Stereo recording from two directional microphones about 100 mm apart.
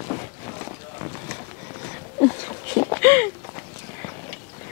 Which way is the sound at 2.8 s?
25° left (ahead or behind).